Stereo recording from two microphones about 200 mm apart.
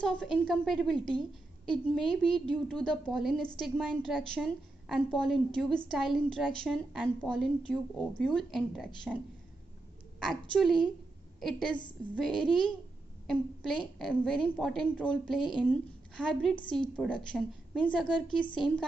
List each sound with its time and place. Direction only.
0.0 s a woman's voice: 5° left (ahead or behind)
10.2 s a woman's voice: centre (ahead or behind)